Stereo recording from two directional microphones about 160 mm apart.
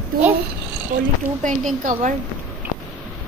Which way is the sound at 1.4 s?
50° right (ahead or behind).